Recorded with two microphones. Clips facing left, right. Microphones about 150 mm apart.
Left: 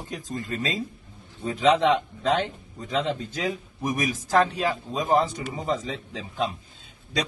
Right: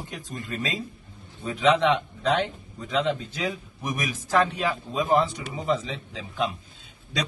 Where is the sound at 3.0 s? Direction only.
40° left (ahead or behind).